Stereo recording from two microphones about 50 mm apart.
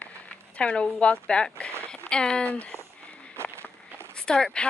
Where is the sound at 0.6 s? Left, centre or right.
Left.